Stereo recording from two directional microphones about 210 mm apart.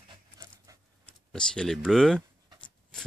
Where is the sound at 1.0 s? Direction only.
5° left (ahead or behind).